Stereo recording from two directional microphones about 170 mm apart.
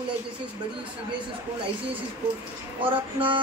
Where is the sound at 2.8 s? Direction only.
30° right (ahead or behind).